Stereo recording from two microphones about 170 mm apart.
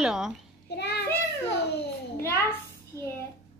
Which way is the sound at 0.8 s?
80° left.